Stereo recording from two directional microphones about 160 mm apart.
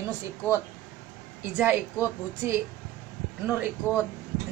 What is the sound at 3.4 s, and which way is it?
Speech, 10° right (ahead or behind).